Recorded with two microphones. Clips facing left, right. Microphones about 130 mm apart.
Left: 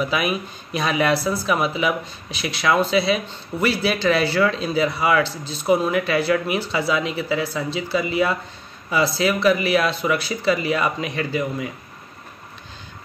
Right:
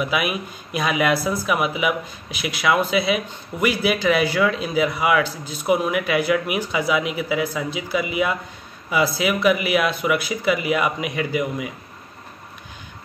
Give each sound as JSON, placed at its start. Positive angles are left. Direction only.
{"t": 0.0, "sound": "a man's voice", "side_deg": -10}